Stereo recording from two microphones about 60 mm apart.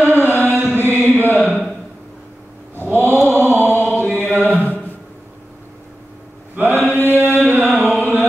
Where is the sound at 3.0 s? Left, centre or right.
Right.